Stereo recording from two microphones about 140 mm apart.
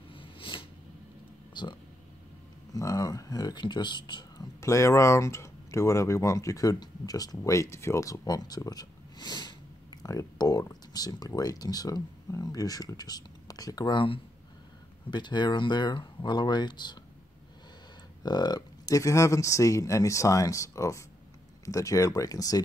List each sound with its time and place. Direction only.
0.1 s a sound: 35° left (ahead or behind)
2.7 s speech: 25° left (ahead or behind)
18.2 s speech: 30° left (ahead or behind)